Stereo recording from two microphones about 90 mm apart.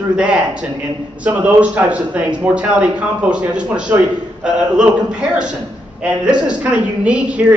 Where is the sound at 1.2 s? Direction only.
15° right (ahead or behind).